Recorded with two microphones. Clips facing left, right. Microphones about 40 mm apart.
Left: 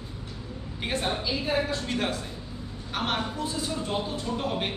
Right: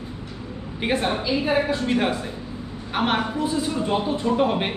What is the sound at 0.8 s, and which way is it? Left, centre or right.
A man's voice, right.